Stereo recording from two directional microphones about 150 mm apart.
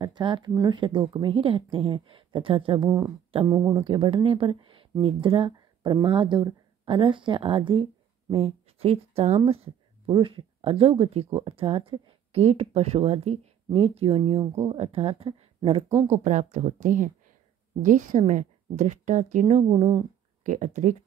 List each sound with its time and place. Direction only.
0.0 s speech: 30° right (ahead or behind)
3.4 s speech: 20° right (ahead or behind)
3.7 s speech: 35° right (ahead or behind)
14.4 s speech: 20° right (ahead or behind)
14.7 s speech: 40° right (ahead or behind)
16.1 s a woman's voice: 55° right (ahead or behind)
19.7 s speech: 35° right (ahead or behind)
20.4 s a woman's voice: 55° right (ahead or behind)